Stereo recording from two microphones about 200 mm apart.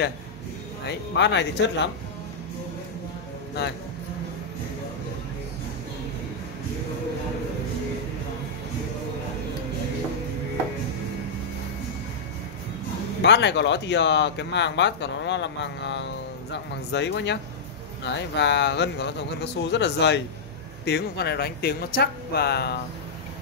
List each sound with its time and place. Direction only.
0.8 s speech: 60° left (ahead or behind)
13.2 s speech: 60° left (ahead or behind)